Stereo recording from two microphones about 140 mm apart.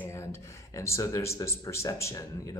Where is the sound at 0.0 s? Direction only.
20° left (ahead or behind).